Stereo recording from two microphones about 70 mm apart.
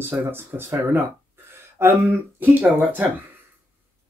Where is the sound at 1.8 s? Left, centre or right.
Right.